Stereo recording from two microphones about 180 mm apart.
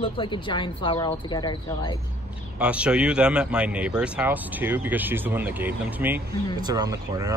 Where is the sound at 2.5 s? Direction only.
5° right (ahead or behind).